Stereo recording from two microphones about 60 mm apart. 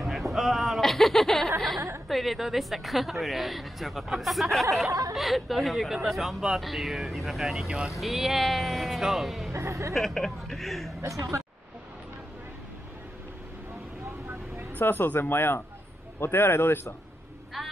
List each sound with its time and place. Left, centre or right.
0.0 s a sound: centre
2.0 s speech: centre
4.8 s speech: right
5.1 s speech: centre
9.5 s speech: right
9.9 s speech: centre
11.0 s speech: right
14.8 s speech: left
17.6 s vehicle: centre